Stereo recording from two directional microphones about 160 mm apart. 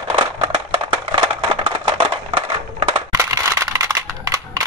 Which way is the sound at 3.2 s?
20° right (ahead or behind).